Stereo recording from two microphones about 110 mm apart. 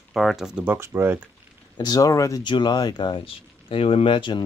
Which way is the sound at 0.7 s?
25° right (ahead or behind).